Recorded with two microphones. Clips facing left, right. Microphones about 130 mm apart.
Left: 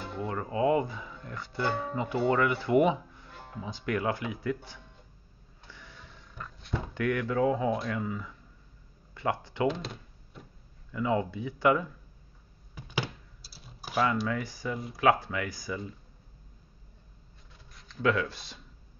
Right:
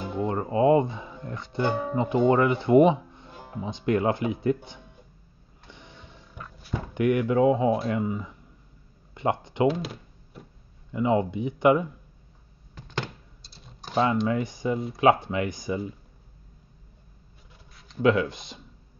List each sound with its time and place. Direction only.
0.0 s music: 20° right (ahead or behind)
0.4 s speech: 30° right (ahead or behind)
5.7 s printer: 20° right (ahead or behind)
6.4 s a sound: 5° right (ahead or behind)
6.9 s speech: 20° right (ahead or behind)
9.7 s a sound: 5° right (ahead or behind)
10.9 s speech: 20° right (ahead or behind)
12.7 s typing: 10° left (ahead or behind)
14.2 s speech: 20° right (ahead or behind)
17.8 s speech: 20° right (ahead or behind)